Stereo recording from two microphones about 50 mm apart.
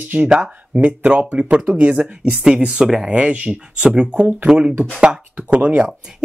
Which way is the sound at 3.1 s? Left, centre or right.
Right.